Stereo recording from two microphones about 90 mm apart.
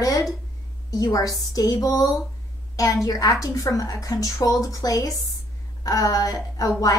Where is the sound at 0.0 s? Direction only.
40° left (ahead or behind).